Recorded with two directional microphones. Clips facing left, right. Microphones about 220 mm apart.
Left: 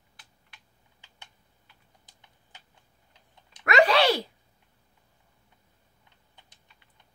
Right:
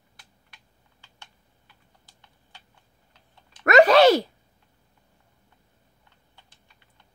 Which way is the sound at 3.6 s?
45° right (ahead or behind).